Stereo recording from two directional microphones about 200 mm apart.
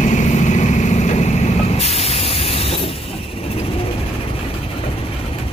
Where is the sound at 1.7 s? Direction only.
30° left (ahead or behind).